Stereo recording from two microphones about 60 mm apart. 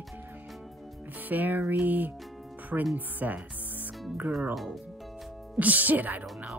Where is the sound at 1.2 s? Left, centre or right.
Right.